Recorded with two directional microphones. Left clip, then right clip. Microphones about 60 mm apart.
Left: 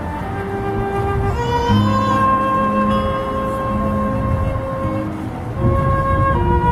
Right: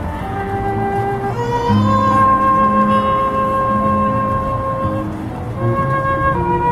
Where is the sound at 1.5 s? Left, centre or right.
Left.